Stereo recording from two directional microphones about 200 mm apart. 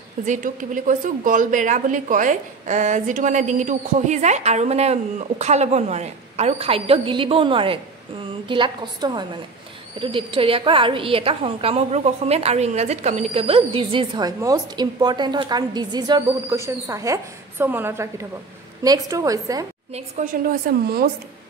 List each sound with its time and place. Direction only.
0.2 s a woman's voice: 40° right (ahead or behind); by 19.6 s 15° right (ahead or behind)
20.2 s a woman's voice: 35° right (ahead or behind)
20.7 s a woman's voice: 45° right (ahead or behind)